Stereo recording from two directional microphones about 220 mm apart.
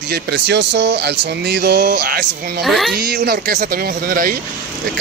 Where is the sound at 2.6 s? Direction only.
Centre (ahead or behind).